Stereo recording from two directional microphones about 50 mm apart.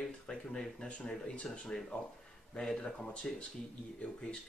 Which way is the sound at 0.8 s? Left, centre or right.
Left.